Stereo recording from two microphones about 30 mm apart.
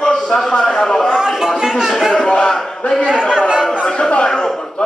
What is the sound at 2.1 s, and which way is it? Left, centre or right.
A man's voice, left.